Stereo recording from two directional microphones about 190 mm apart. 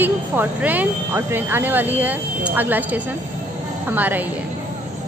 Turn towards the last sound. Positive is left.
turn(degrees=-10)  # may be behind; listen again after turning